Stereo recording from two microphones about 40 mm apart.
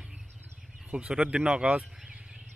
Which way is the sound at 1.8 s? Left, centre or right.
Centre.